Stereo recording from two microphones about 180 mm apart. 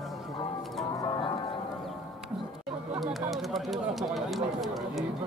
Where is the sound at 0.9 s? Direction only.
25° left (ahead or behind).